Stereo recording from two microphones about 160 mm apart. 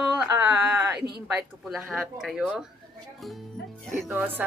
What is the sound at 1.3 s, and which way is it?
Speech, 5° right (ahead or behind).